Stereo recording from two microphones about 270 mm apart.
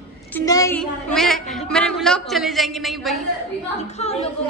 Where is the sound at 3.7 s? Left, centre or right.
Left.